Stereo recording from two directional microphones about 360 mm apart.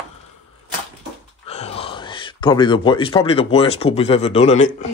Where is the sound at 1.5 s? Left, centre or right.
Centre.